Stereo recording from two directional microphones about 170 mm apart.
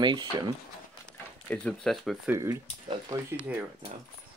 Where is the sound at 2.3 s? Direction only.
15° right (ahead or behind).